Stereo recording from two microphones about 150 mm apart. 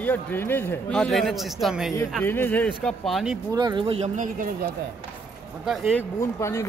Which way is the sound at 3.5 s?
30° right (ahead or behind).